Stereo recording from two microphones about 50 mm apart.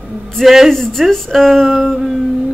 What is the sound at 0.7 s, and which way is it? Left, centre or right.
Speech, centre.